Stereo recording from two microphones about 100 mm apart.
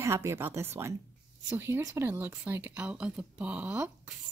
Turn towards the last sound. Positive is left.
turn(degrees=-15)  # may be behind; listen again after turning